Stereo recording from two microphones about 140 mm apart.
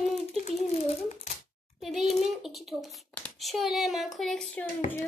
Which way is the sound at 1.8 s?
Centre (ahead or behind).